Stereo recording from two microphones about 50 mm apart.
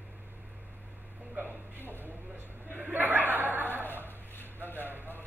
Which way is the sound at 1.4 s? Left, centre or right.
Right.